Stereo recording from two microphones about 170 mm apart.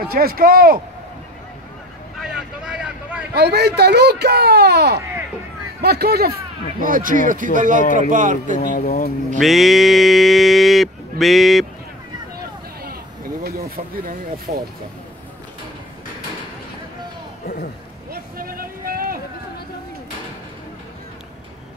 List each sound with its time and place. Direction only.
0.1 s speech: 60° right (ahead or behind)
2.1 s vehicle: 5° right (ahead or behind)
3.3 s speech: 75° right (ahead or behind)
6.8 s speech: 55° right (ahead or behind)
8.5 s speech: 55° left (ahead or behind)
9.4 s speech: centre (ahead or behind)
12.8 s a sound: 60° right (ahead or behind)
13.7 s speech: 60° right (ahead or behind)
18.1 s a sound: 60° right (ahead or behind)